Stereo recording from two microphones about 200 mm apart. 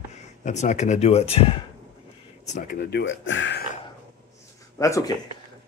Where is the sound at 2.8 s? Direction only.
55° left (ahead or behind).